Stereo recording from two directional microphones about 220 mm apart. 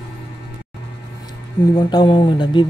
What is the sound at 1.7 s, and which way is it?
Speech, 20° left (ahead or behind).